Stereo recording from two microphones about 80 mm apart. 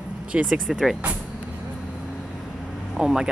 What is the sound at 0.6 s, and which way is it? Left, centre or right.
Speech, centre.